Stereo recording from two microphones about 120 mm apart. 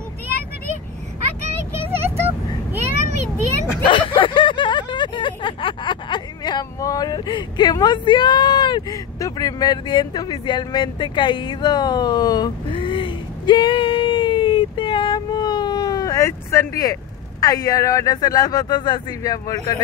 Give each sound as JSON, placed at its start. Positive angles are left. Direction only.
{"t": 1.7, "sound": "vehicle", "side_deg": -20}
{"t": 3.8, "sound": "speech", "side_deg": 40}